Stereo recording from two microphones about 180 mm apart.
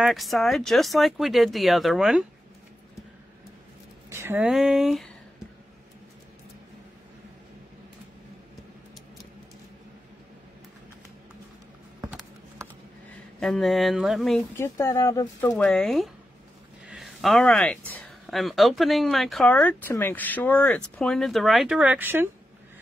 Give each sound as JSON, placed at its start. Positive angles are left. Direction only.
{"t": 0.0, "sound": "speech", "side_deg": 0}
{"t": 4.1, "sound": "speech", "side_deg": -15}
{"t": 4.5, "sound": "speech", "side_deg": 0}
{"t": 13.4, "sound": "speech", "side_deg": 0}
{"t": 14.6, "sound": "speech", "side_deg": 15}
{"t": 15.5, "sound": "speech", "side_deg": 5}